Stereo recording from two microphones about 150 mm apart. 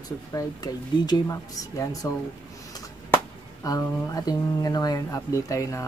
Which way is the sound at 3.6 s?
25° left (ahead or behind).